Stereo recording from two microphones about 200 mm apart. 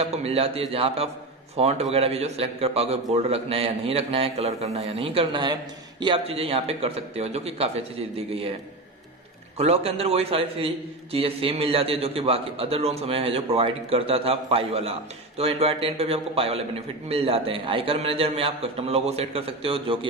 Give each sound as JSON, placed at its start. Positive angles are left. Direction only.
{"t": 0.0, "sound": "a man's voice", "side_deg": -30}
{"t": 9.6, "sound": "a man's voice", "side_deg": -30}